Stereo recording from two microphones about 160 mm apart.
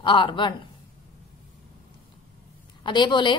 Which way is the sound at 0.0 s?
30° left (ahead or behind).